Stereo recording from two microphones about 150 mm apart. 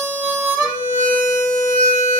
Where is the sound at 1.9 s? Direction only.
45° left (ahead or behind).